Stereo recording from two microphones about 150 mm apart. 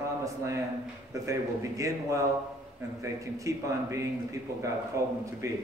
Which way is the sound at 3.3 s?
20° right (ahead or behind).